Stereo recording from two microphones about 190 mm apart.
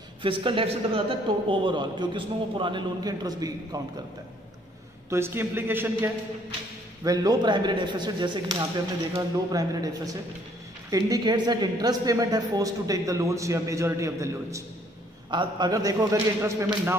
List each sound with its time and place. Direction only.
0.2 s speech: 25° right (ahead or behind)
5.1 s a woman's voice: 10° right (ahead or behind)
7.1 s a woman's voice: 20° right (ahead or behind)